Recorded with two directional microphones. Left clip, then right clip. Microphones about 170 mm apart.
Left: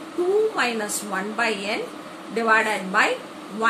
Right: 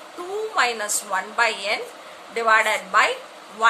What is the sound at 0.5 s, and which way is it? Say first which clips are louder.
A woman's voice: right 2 dB; 60° right (ahead or behind).